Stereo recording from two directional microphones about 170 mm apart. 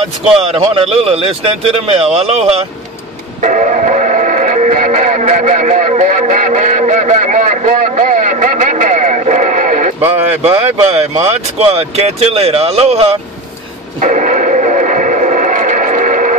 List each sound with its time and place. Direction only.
0.5 s speech: 35° right (ahead or behind)
3.4 s music: 45° right (ahead or behind)
10.4 s speech: 40° right (ahead or behind)
14.0 s radio: 45° right (ahead or behind)